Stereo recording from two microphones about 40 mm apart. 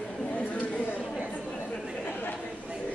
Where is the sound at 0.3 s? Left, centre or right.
Left.